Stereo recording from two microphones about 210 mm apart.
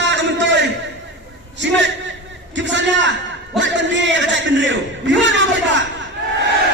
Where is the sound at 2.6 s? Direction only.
60° right (ahead or behind).